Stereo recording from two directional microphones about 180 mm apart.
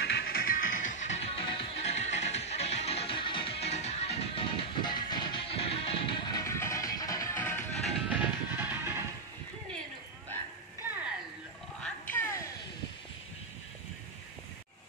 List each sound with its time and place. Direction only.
0.0 s music: 60° left (ahead or behind); by 7.6 s 10° left (ahead or behind)
8.1 s music: 10° right (ahead or behind)
11.8 s music: 10° left (ahead or behind)